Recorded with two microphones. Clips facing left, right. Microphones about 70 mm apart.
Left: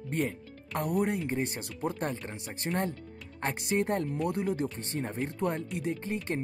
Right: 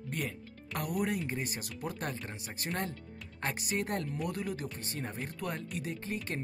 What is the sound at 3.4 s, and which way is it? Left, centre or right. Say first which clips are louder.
Speech: left 5 dB; left.